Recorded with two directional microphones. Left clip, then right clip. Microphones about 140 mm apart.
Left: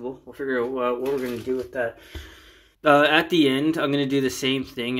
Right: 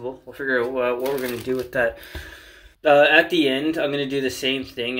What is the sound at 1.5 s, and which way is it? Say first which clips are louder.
Speech: right 7 dB; 30° right (ahead or behind).